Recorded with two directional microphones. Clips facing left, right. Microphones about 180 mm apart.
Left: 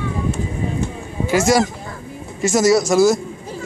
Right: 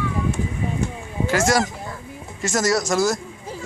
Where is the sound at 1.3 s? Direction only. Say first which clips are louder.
Left 4 dB; 10° left (ahead or behind).